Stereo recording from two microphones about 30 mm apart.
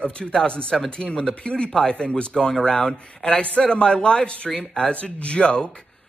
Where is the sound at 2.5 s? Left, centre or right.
Left.